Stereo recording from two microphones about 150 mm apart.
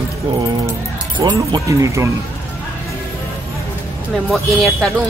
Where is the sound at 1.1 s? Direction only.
30° right (ahead or behind).